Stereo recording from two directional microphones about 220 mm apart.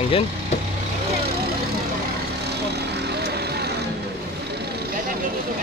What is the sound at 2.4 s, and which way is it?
Vehicle, 50° right (ahead or behind).